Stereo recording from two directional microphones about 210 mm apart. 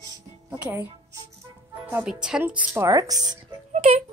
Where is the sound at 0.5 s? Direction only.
10° right (ahead or behind).